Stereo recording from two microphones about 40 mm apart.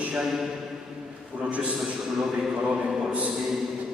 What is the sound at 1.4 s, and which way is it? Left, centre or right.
Speech, right.